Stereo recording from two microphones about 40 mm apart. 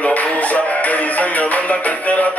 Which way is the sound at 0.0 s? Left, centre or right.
Left.